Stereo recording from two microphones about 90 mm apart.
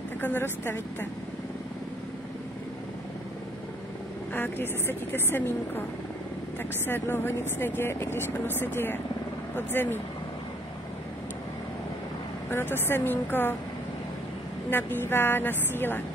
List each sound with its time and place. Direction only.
0.2 s speech: 25° left (ahead or behind)
4.3 s speech: 25° left (ahead or behind)
6.9 s speech: 25° left (ahead or behind)
12.4 s speech: 25° left (ahead or behind)
14.7 s speech: 25° left (ahead or behind)